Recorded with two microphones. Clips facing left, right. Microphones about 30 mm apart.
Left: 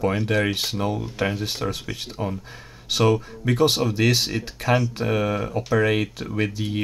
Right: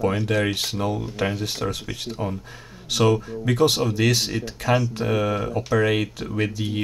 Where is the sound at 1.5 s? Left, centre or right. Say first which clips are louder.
Even; centre.